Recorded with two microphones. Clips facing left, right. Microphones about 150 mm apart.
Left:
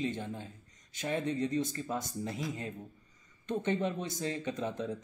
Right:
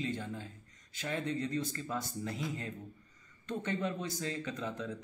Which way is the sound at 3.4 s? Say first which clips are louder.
Left 4 dB; 20° left (ahead or behind).